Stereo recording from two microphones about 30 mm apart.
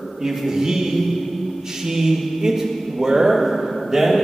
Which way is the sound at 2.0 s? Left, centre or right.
Centre.